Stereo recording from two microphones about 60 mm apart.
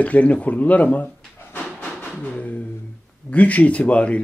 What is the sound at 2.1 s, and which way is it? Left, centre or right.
Speech, centre.